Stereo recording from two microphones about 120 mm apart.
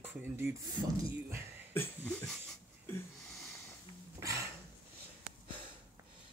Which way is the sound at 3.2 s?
Centre (ahead or behind).